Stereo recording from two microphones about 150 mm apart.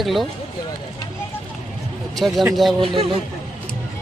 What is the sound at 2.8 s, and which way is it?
Speech, 40° right (ahead or behind).